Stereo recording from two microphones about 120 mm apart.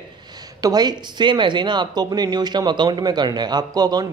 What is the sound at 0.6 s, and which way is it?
Speech, 35° right (ahead or behind).